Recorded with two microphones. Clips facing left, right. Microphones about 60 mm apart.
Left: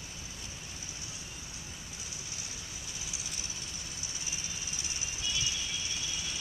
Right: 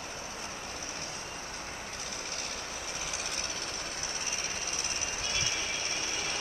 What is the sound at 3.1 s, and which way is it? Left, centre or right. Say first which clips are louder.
Vehicle: right 7 dB; right.